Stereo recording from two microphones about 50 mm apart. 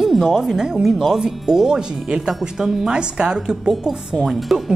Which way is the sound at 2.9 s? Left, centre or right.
Centre.